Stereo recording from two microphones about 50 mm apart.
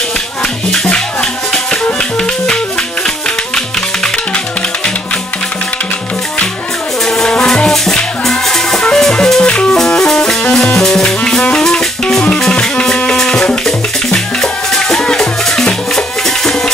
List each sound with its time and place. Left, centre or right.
2.1 s music: centre
7.2 s music: centre
9.4 s music: left